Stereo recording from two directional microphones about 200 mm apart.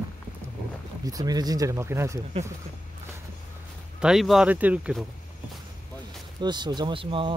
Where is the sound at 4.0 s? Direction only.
Centre (ahead or behind).